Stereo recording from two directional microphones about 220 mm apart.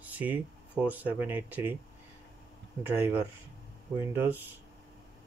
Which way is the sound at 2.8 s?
10° right (ahead or behind).